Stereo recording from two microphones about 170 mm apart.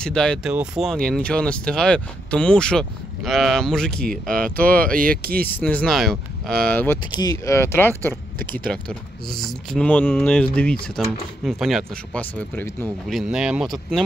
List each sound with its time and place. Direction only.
0.0 s speech: 5° left (ahead or behind)
4.6 s speech: 60° right (ahead or behind)
5.5 s speech: 10° left (ahead or behind)
7.1 s speech: 20° left (ahead or behind)
13.1 s speech: 5° right (ahead or behind)